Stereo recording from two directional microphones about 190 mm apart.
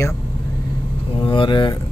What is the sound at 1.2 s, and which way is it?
Speech, 25° left (ahead or behind).